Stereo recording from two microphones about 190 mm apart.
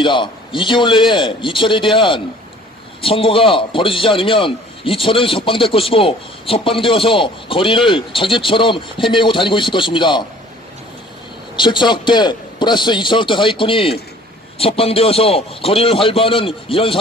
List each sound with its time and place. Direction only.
0.0 s a man's voice: 25° left (ahead or behind)
11.5 s a man's voice: 25° left (ahead or behind)